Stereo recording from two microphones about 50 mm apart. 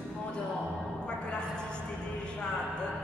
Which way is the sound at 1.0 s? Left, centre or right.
Centre.